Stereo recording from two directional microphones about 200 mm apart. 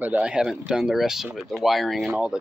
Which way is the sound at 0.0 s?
5° right (ahead or behind).